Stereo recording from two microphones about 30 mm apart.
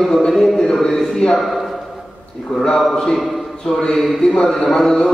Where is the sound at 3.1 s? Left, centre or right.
Centre.